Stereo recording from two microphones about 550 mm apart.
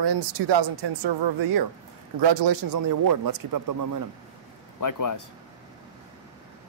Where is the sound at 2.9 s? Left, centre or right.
Right.